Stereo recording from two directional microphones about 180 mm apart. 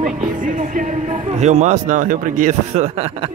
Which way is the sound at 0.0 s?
45° right (ahead or behind).